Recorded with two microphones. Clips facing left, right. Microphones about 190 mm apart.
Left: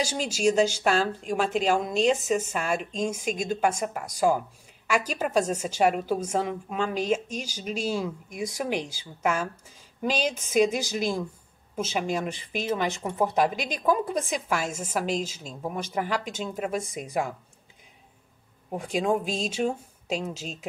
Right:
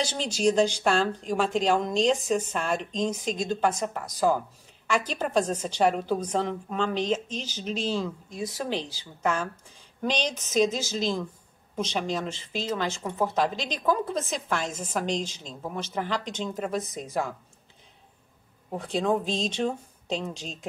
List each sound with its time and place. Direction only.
0.0 s a woman's voice: 10° left (ahead or behind)
18.7 s a woman's voice: 10° left (ahead or behind)